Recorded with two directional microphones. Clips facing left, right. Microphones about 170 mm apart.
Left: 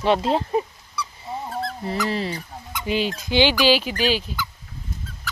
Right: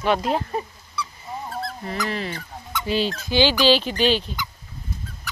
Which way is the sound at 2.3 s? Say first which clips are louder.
Right 1 dB; 15° left (ahead or behind).